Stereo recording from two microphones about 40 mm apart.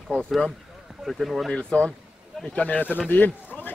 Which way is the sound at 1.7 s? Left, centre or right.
Left.